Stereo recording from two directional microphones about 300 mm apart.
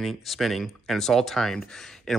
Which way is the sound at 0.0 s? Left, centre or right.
Centre.